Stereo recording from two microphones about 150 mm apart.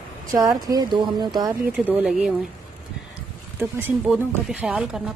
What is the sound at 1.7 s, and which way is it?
Speech, 10° right (ahead or behind).